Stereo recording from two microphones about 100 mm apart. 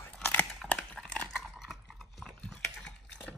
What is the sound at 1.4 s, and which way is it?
Chewing, 5° right (ahead or behind).